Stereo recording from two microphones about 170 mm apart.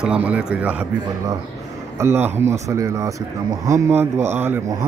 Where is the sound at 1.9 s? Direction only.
15° right (ahead or behind).